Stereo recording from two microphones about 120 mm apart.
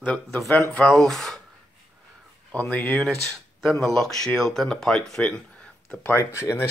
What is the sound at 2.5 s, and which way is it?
Speech, 15° left (ahead or behind).